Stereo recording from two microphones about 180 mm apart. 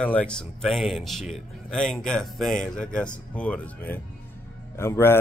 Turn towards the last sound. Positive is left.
turn(degrees=15)  # may be behind; listen again after turning